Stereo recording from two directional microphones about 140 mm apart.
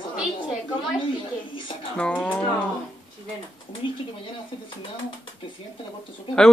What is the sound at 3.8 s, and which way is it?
Speech, 35° left (ahead or behind).